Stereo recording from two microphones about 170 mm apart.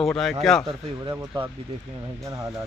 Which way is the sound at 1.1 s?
20° right (ahead or behind).